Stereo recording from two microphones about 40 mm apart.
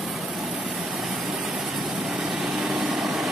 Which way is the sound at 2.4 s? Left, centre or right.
Centre.